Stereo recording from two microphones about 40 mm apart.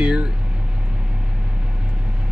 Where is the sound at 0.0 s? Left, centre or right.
Right.